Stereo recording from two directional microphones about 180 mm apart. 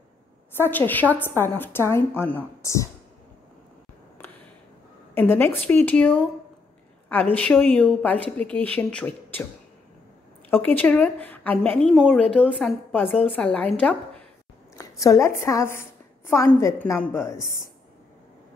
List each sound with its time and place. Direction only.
0.6 s a woman's voice: 10° left (ahead or behind)
5.1 s a woman's voice: 10° left (ahead or behind)
10.5 s a woman's voice: 10° left (ahead or behind)
14.8 s a woman's voice: 15° left (ahead or behind)